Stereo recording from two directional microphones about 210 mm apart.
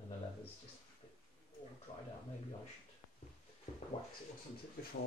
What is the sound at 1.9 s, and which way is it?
Speech, 35° left (ahead or behind).